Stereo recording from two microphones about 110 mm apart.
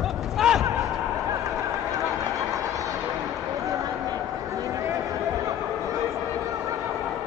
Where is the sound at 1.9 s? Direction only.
30° right (ahead or behind).